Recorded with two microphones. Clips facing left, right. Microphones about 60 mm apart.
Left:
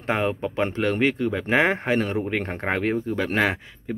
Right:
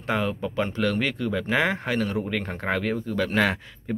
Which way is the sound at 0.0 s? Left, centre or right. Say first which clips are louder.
Left 2 dB; left.